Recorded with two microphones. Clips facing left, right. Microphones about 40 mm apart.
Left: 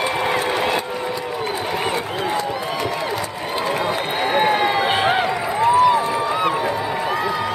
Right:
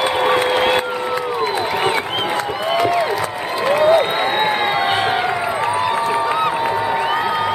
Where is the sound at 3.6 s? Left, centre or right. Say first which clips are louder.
Right 9 dB; right.